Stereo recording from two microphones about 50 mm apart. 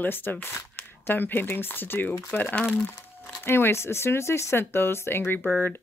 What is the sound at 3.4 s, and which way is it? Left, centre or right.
Speech, left.